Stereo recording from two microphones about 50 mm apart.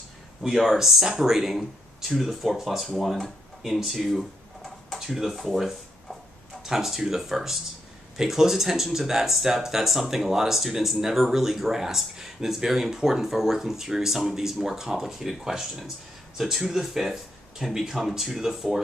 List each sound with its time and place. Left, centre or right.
0.4 s speech: centre